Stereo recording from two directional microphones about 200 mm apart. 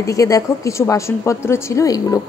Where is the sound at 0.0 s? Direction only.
15° left (ahead or behind).